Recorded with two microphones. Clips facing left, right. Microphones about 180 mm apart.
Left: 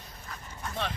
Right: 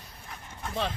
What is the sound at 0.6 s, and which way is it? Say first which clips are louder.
Dog: right 3 dB; 25° right (ahead or behind).